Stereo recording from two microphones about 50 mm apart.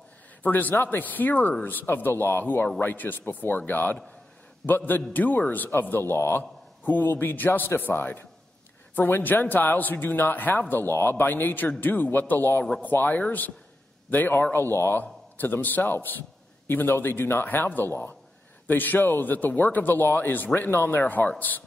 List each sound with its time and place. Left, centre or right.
0.4 s a man's voice: left